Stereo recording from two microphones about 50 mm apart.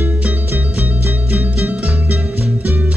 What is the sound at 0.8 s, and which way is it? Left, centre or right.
Music, right.